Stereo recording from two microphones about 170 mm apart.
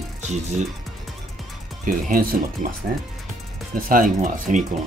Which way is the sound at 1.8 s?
55° right (ahead or behind).